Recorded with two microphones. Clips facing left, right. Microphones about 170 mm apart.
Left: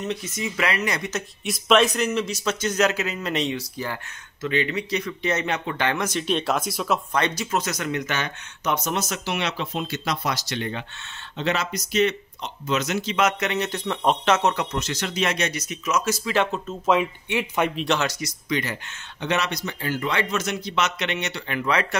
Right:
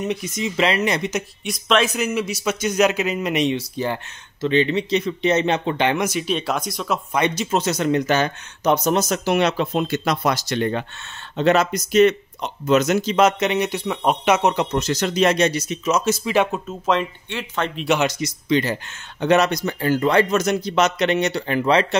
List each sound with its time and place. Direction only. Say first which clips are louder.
0.0 s speech: right 4 dB; 15° right (ahead or behind)
1.4 s a man's voice: left 1 dB; centre (ahead or behind)
7.2 s a man's voice: right 6 dB; 15° right (ahead or behind)
7.5 s speech: right 6 dB; 30° right (ahead or behind)
13.4 s a man's voice: right 5 dB; 15° right (ahead or behind)
14.5 s speech: right 5 dB; 25° right (ahead or behind)
14.8 s speech: right 7 dB; 40° right (ahead or behind); by 16.6 s 15° right (ahead or behind)
16.6 s speech: even; 5° left (ahead or behind)
17.3 s speech: left 4 dB; 15° left (ahead or behind)
17.9 s speech: right 5 dB; 20° right (ahead or behind)
19.2 s a man's voice: right 8 dB; 45° right (ahead or behind)